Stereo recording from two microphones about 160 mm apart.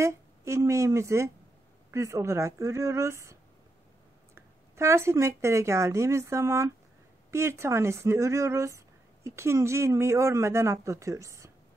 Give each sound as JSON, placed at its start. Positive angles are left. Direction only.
{"t": 0.0, "sound": "speech", "side_deg": -20}
{"t": 4.4, "sound": "speech", "side_deg": -15}